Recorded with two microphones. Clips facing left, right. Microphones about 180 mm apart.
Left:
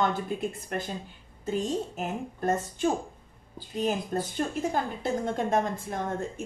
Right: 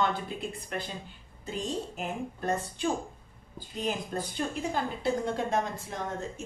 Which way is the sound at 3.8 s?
45° left (ahead or behind).